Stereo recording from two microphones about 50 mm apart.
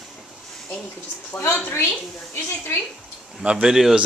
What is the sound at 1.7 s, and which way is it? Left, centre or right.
A woman's voice, left.